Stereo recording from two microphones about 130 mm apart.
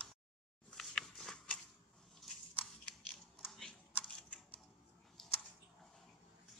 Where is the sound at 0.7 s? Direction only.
5° left (ahead or behind).